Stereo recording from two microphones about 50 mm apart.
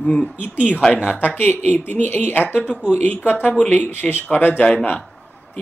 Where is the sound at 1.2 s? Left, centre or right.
Left.